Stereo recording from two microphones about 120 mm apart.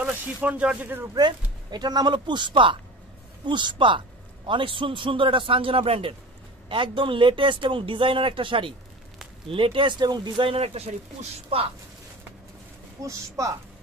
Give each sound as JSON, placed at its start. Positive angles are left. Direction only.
{"t": 0.0, "sound": "speech", "side_deg": -15}
{"t": 1.1, "sound": "speech", "side_deg": -35}
{"t": 13.0, "sound": "speech", "side_deg": -25}